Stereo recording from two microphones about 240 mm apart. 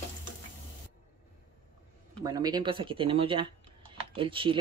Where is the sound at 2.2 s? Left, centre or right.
Centre.